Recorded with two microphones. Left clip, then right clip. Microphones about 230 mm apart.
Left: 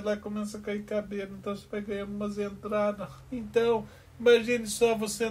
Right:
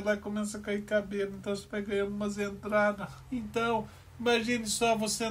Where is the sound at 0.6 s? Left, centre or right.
Right.